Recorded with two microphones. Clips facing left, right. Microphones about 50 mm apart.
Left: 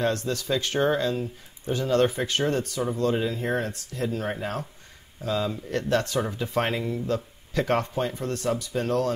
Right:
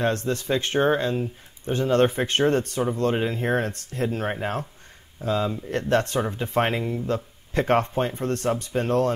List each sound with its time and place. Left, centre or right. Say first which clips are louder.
0.0 s speech: right 2 dB; right